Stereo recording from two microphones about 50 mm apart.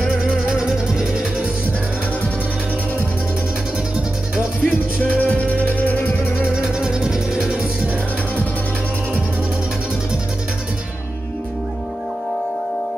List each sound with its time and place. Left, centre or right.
0.5 s music: centre
4.6 s music: left
6.4 s music: centre